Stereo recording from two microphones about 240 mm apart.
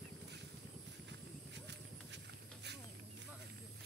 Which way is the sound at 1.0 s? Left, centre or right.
Right.